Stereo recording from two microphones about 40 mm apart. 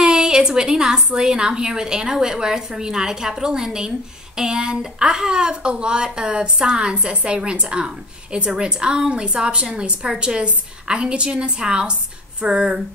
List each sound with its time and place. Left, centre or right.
0.0 s a woman's voice: centre